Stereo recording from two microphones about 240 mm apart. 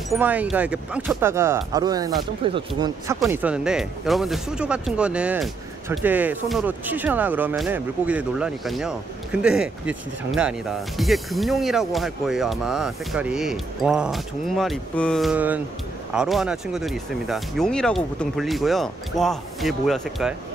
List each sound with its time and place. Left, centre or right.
0.1 s speech: centre; by 2.6 s right
3.2 s speech: centre